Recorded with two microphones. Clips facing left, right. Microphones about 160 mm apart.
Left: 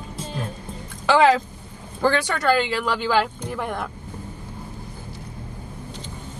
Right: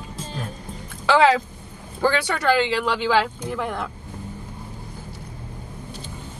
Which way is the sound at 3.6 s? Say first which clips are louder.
Even; 15° left (ahead or behind).